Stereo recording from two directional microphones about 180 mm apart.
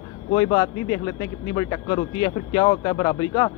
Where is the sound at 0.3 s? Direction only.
25° left (ahead or behind).